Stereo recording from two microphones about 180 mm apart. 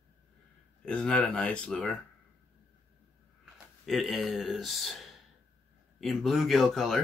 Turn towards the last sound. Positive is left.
turn(degrees=0)  # may be behind; listen again after turning